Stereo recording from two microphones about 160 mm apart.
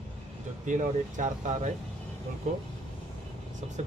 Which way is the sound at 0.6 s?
50° right (ahead or behind).